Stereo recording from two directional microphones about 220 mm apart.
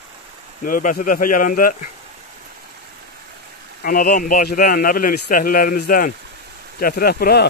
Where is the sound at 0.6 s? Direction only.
40° left (ahead or behind).